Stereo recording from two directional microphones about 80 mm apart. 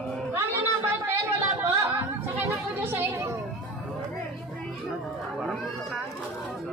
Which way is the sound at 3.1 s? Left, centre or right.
Right.